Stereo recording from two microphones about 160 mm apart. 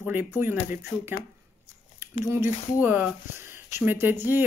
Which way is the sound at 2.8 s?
10° right (ahead or behind).